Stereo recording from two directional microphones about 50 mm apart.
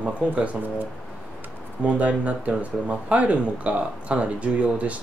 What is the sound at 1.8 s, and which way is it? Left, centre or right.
Speech, right.